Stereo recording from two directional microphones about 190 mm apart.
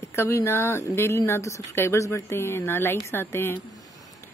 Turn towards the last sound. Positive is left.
turn(degrees=10)  # may be behind; listen again after turning